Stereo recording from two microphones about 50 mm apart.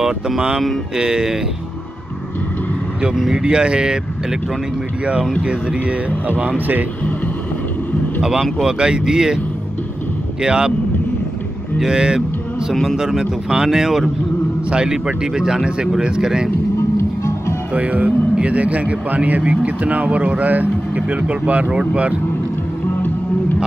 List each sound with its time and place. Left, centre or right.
0.9 s speech: centre
3.2 s speech: centre
5.4 s speech: centre
8.2 s speech: centre
10.4 s speech: centre
11.8 s speech: centre
14.7 s speech: centre
16.9 s music: left
17.7 s speech: right